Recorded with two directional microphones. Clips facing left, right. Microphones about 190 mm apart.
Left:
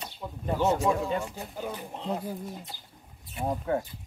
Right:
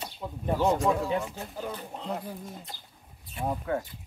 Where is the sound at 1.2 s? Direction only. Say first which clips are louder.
Even; 10° left (ahead or behind).